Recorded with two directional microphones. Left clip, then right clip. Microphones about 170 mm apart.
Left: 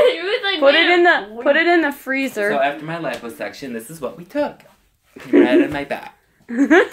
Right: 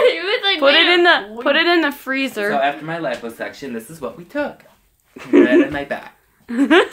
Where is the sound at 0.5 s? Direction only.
5° right (ahead or behind).